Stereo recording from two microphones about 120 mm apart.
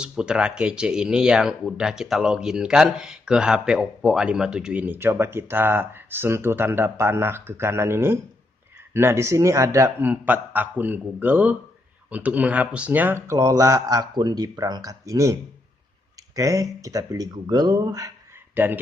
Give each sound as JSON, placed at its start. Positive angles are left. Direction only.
{"t": 0.0, "sound": "speech", "side_deg": -5}
{"t": 16.3, "sound": "speech", "side_deg": -25}
{"t": 18.5, "sound": "speech", "side_deg": -15}